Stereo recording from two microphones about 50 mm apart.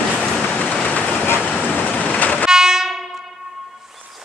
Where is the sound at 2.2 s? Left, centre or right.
Left.